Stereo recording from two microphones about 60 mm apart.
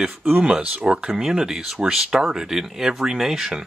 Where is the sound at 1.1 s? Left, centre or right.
Centre.